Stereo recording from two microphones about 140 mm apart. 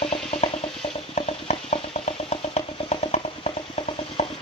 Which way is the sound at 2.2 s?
50° left (ahead or behind).